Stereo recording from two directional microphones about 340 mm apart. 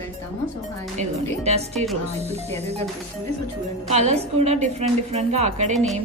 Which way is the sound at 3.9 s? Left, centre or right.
Centre.